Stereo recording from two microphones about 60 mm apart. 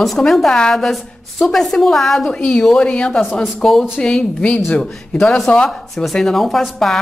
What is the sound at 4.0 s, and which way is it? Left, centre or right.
A woman's voice, centre.